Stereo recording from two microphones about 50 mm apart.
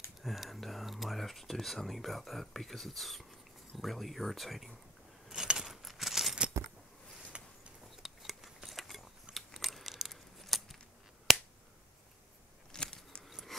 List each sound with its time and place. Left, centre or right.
0.2 s speech: centre
5.3 s keys jangling: centre
7.3 s a sound: right
7.9 s scissors: centre
9.3 s biting: centre
10.4 s scissors: centre
11.3 s finger snapping: centre
12.7 s a sound: centre
13.5 s a sound: centre